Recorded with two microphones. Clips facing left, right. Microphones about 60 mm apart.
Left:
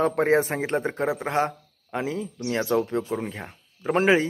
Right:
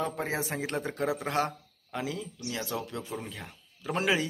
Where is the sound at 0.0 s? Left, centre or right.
Left.